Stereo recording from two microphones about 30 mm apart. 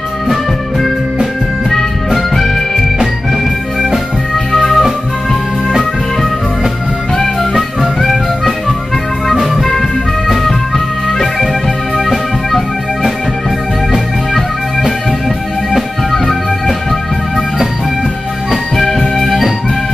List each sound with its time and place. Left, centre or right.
0.3 s music: centre
2.1 s music: centre
4.5 s music: centre
7.8 s music: centre
18.9 s music: centre